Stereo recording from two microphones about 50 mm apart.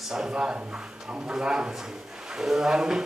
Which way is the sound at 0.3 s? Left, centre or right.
Right.